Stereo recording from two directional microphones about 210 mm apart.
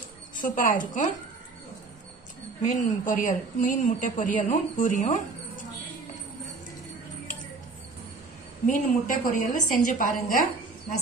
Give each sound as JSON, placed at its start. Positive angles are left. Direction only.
{"t": 0.4, "sound": "a woman's voice", "side_deg": 40}
{"t": 2.6, "sound": "a woman's voice", "side_deg": 40}
{"t": 8.6, "sound": "a woman's voice", "side_deg": 40}